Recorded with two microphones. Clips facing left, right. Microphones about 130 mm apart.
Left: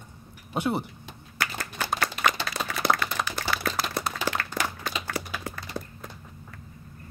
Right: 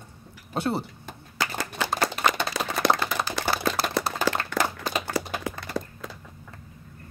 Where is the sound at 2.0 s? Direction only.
40° right (ahead or behind).